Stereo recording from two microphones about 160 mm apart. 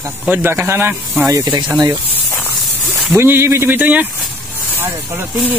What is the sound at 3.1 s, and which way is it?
Speech, 15° right (ahead or behind).